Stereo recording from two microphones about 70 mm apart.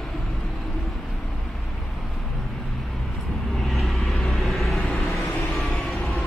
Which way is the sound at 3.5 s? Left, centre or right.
Centre.